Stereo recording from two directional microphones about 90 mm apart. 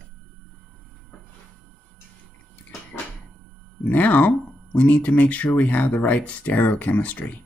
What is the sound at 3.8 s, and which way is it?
Speech, 15° left (ahead or behind).